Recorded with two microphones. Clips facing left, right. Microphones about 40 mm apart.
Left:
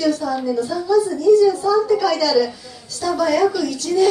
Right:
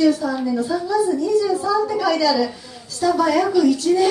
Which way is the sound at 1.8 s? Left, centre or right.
Centre.